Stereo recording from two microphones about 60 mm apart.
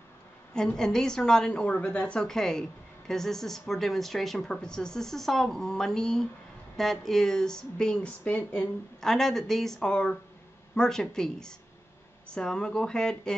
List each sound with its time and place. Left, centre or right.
0.7 s a woman's voice: centre
2.2 s a woman's voice: centre
9.0 s a woman's voice: centre